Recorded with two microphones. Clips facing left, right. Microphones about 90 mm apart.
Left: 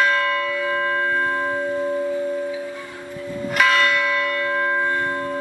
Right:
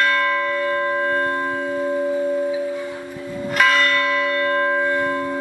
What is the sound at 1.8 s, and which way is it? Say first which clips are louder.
Singing bowl: right 1 dB; 20° right (ahead or behind).